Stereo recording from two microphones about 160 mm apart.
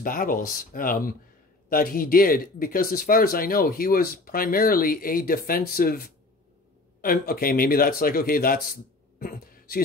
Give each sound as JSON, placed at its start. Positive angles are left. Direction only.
{"t": 0.0, "sound": "speech", "side_deg": 60}